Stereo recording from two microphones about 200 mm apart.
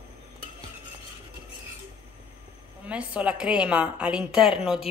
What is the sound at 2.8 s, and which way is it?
Speech, 5° right (ahead or behind).